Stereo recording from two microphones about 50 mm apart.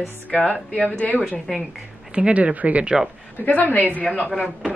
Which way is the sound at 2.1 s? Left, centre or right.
Right.